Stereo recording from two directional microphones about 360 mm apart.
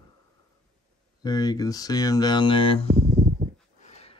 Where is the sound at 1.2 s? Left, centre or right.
Centre.